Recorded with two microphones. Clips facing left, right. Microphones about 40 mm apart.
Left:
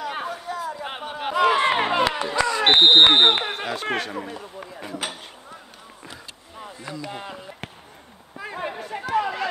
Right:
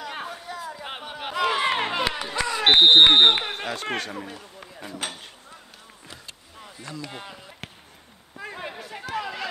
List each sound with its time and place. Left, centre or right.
0.0 s chatter: centre
1.2 s crowd: centre
2.3 s speech: centre
6.6 s a sound: left
7.0 s speech: centre
8.5 s a sound: centre